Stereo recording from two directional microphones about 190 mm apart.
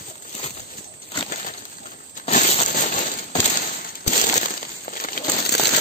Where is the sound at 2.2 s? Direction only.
35° left (ahead or behind).